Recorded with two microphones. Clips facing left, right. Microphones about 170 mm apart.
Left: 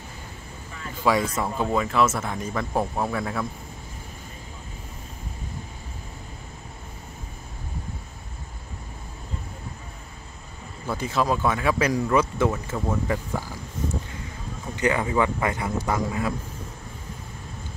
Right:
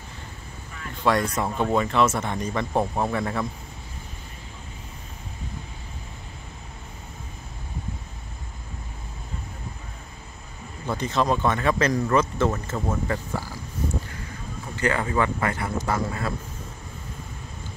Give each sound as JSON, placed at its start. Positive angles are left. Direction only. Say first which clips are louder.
{"t": 0.9, "sound": "speech", "louder": "even", "side_deg": 0}
{"t": 10.9, "sound": "speech", "louder": "right 1 dB", "side_deg": 5}
{"t": 14.8, "sound": "speech", "louder": "left 1 dB", "side_deg": 15}